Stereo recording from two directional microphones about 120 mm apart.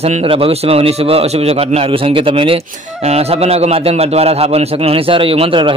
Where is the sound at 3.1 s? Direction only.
60° right (ahead or behind).